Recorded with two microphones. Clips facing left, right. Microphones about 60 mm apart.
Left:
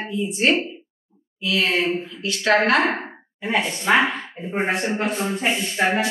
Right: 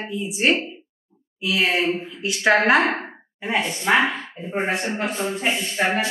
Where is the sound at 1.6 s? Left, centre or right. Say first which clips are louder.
Right 1 dB; centre.